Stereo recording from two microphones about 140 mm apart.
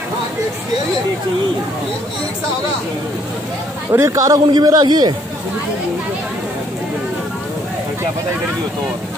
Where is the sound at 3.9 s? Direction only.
20° right (ahead or behind).